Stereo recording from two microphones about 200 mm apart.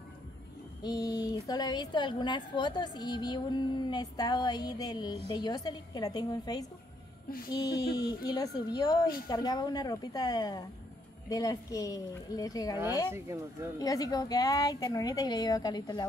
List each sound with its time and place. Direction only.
0.8 s a woman's voice: 20° left (ahead or behind)
13.1 s speech: 10° right (ahead or behind)
13.7 s speech: 20° left (ahead or behind)